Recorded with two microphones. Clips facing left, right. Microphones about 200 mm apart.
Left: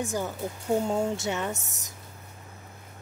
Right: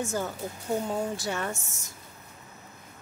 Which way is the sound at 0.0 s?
15° left (ahead or behind).